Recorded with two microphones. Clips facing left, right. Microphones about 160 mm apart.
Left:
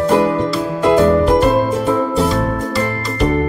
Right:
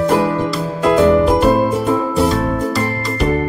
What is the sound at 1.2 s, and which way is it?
Music, centre (ahead or behind).